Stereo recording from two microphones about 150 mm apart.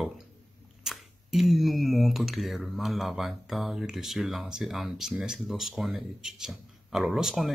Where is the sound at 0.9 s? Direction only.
Centre (ahead or behind).